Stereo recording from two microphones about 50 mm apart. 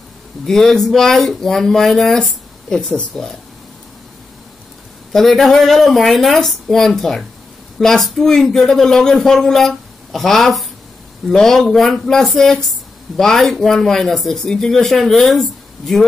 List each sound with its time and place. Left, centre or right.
0.5 s a man's voice: centre
5.1 s a man's voice: centre